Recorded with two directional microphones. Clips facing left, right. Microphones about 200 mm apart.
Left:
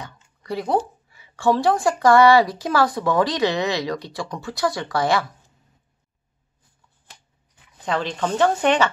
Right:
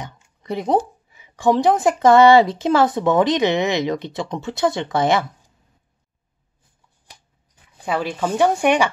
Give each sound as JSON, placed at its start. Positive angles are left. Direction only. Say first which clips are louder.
{"t": 0.0, "sound": "speech", "louder": "right 3 dB", "side_deg": -20}
{"t": 7.8, "sound": "speech", "louder": "right 2 dB", "side_deg": -10}